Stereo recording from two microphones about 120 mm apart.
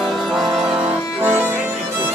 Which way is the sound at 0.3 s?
5° right (ahead or behind).